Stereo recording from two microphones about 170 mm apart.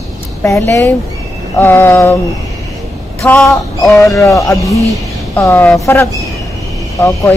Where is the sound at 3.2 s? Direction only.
5° left (ahead or behind).